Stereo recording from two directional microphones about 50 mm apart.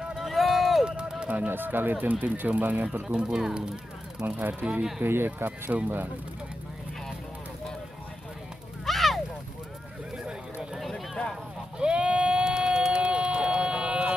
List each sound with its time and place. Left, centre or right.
0.2 s run: centre
0.8 s music: centre
1.3 s speech: right
3.1 s speech: centre
4.4 s speech: right
5.7 s speech: right
8.8 s a sound: centre
10.1 s a sound: centre
11.8 s vehicle: right